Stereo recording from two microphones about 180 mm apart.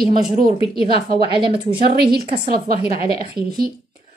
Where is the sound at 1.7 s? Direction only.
60° right (ahead or behind).